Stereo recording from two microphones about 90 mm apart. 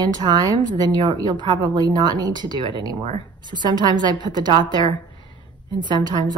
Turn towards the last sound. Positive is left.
turn(degrees=-55)  # may be behind; listen again after turning